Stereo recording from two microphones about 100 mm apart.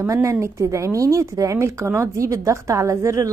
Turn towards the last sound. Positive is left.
turn(degrees=-30)  # may be behind; listen again after turning